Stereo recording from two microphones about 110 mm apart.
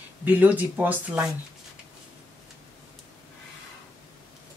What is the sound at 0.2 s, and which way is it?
Speech, 15° right (ahead or behind).